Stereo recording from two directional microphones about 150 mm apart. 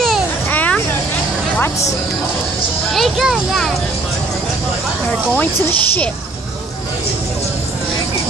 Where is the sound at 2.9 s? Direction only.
Centre (ahead or behind).